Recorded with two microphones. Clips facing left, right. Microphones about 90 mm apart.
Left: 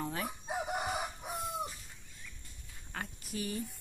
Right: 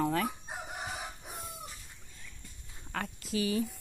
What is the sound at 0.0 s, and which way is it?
Chicken, 65° right (ahead or behind).